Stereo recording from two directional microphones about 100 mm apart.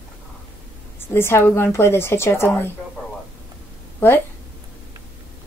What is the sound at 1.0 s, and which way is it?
A woman's voice, 25° left (ahead or behind).